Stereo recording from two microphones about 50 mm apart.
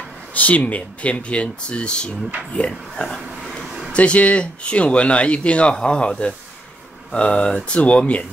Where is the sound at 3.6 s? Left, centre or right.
Centre.